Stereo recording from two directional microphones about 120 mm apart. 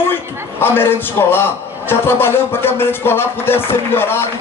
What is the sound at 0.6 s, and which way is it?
A man's voice, 20° left (ahead or behind).